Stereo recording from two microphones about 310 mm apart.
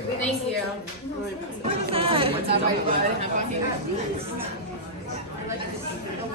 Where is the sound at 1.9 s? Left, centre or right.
Centre.